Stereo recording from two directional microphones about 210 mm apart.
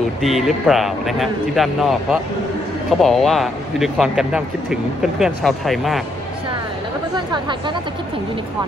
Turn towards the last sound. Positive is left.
turn(degrees=-20)  # may be behind; listen again after turning